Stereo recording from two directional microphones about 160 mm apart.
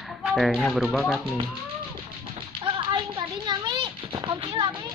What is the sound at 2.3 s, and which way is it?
Typewriter, 35° right (ahead or behind).